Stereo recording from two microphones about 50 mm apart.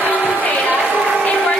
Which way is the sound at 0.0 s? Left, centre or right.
Left.